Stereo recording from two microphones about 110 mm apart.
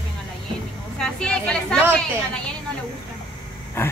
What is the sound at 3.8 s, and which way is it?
Speech, 25° left (ahead or behind).